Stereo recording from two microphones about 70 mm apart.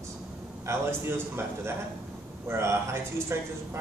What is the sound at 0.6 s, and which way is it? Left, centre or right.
Speech, right.